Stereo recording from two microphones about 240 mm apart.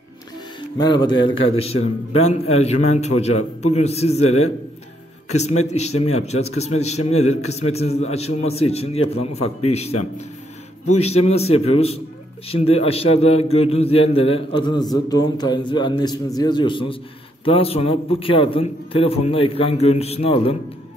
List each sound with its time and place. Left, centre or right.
0.7 s a man's voice: centre
5.7 s a man's voice: left